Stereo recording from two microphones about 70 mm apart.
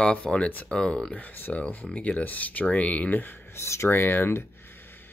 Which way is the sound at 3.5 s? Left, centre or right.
Left.